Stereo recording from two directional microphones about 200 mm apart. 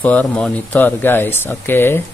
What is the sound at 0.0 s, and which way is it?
Speech, 5° left (ahead or behind).